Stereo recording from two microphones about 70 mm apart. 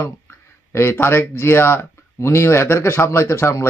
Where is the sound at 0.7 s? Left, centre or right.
Left.